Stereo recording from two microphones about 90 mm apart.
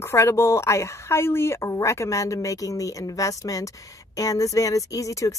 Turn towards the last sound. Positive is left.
turn(degrees=35)  # may be behind; listen again after turning